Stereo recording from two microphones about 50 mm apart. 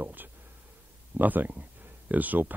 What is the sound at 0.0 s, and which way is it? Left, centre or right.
Speech, right.